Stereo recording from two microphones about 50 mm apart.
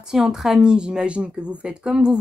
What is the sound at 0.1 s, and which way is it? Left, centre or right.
A woman's voice, centre.